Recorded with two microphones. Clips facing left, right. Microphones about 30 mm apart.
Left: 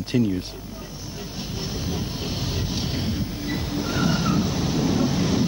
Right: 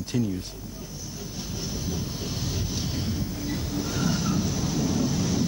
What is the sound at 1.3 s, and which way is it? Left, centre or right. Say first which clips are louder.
Vehicle: left 3 dB; left.